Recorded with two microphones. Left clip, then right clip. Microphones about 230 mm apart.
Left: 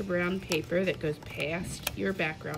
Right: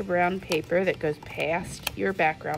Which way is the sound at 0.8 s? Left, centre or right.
Centre.